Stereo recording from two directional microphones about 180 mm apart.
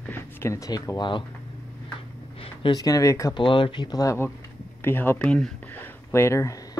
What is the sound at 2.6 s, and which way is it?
Speech, 20° left (ahead or behind).